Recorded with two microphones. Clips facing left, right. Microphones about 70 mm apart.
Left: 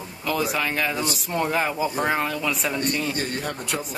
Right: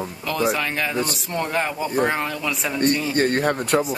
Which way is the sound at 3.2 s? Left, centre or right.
Right.